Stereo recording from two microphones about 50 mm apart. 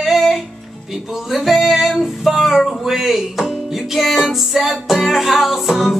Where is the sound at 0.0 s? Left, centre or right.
Centre.